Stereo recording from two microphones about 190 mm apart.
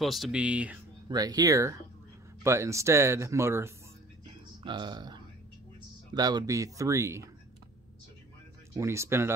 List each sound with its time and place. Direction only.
0.0 s speech: centre (ahead or behind)
1.0 s speech: 20° right (ahead or behind)
8.7 s speech: 15° right (ahead or behind)